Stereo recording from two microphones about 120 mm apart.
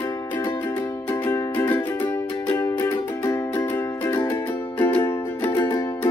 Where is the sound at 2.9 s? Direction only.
30° left (ahead or behind).